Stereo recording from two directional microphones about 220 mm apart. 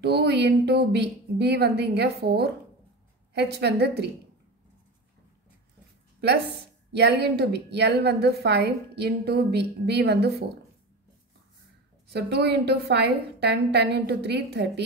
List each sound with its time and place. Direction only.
0.0 s a woman's voice: 50° right (ahead or behind)
6.2 s a woman's voice: 50° right (ahead or behind)
12.1 s a woman's voice: 50° right (ahead or behind)